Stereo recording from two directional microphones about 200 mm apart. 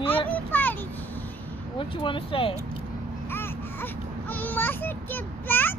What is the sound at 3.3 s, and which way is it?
Baby cry, 10° left (ahead or behind).